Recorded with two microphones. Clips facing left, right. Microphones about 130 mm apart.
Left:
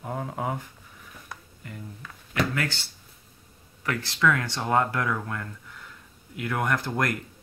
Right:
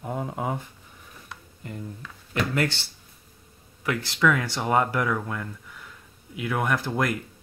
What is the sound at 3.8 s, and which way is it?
Speech, 15° right (ahead or behind).